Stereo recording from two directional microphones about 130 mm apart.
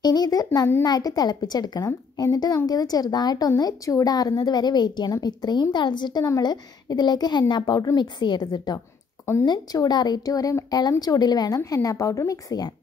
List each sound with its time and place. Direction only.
0.0 s a child's voice: 30° left (ahead or behind)